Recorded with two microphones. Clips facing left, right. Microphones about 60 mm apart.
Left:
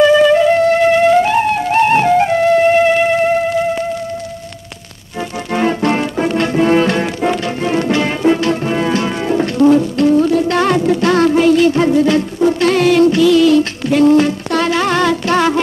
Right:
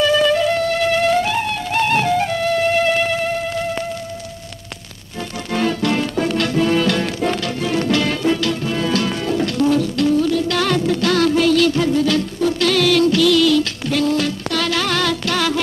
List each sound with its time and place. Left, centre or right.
0.0 s music: left
5.5 s music: left